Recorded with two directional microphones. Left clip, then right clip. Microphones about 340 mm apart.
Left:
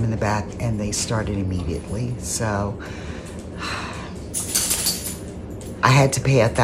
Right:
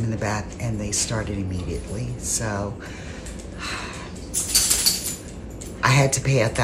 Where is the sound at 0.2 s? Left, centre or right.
Centre.